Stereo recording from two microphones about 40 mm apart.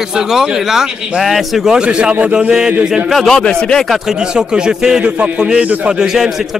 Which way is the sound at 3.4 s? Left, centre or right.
Left.